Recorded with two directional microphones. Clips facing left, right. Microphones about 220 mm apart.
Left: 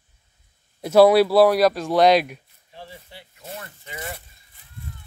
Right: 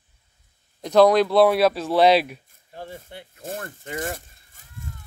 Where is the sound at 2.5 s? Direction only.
50° right (ahead or behind).